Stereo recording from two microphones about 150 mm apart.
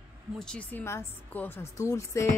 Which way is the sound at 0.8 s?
15° left (ahead or behind).